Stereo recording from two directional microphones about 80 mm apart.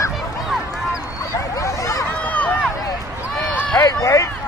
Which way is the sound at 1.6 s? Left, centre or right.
Left.